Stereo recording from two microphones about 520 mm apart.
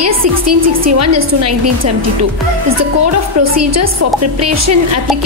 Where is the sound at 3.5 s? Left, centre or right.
Right.